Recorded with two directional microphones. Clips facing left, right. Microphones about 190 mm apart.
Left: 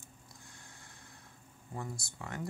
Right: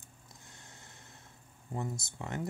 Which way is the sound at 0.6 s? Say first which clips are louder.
Right 1 dB; 20° right (ahead or behind).